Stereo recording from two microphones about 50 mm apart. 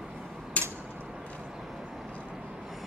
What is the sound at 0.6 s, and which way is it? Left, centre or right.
Mechanisms, left.